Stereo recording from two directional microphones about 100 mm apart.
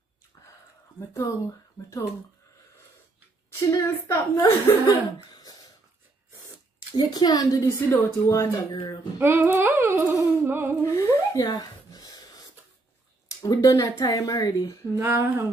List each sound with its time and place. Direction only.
0.9 s speech: 30° left (ahead or behind)
3.7 s speech: 30° left (ahead or behind)
4.8 s speech: 45° left (ahead or behind)
7.0 s a woman's voice: 40° left (ahead or behind)
7.6 s speech: 30° left (ahead or behind)
8.7 s a woman's voice: 50° left (ahead or behind)
9.2 s humming: 20° right (ahead or behind)
10.8 s speech: 25° left (ahead or behind)
11.3 s a sound: 45° left (ahead or behind)
13.4 s speech: 40° left (ahead or behind)
15.0 s humming: 20° right (ahead or behind)